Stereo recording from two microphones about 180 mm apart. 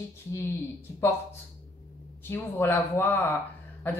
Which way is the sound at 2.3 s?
10° left (ahead or behind).